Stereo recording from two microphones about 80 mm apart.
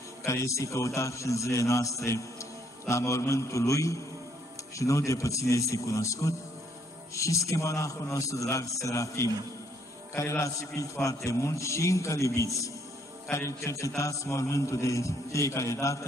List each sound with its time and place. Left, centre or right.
0.2 s a man's voice: left